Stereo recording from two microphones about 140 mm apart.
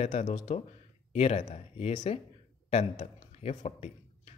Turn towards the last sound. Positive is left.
turn(degrees=55)  # may be behind; listen again after turning